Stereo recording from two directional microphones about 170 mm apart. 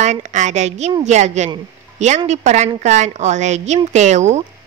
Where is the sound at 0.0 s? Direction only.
45° right (ahead or behind).